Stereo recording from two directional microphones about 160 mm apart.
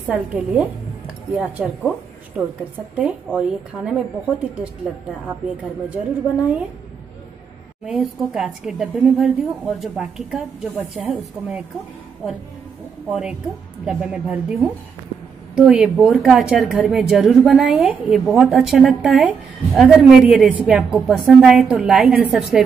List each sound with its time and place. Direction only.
0.1 s a woman's voice: 5° right (ahead or behind)
2.4 s a woman's voice: 15° right (ahead or behind)
3.3 s a woman's voice: 5° right (ahead or behind)
7.8 s a woman's voice: 5° right (ahead or behind)
13.1 s a woman's voice: 5° right (ahead or behind)